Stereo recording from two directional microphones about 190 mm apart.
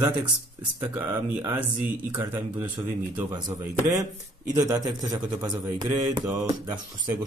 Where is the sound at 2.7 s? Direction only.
20° right (ahead or behind).